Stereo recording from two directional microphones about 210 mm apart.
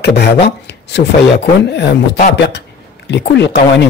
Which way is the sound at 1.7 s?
50° left (ahead or behind).